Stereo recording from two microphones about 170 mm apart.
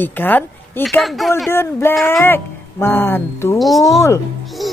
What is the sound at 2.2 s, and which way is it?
Speech, 15° left (ahead or behind).